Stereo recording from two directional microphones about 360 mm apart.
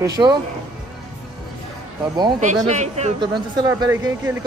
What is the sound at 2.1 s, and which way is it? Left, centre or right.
Speech, centre.